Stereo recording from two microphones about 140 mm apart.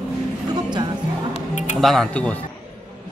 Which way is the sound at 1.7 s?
Centre (ahead or behind).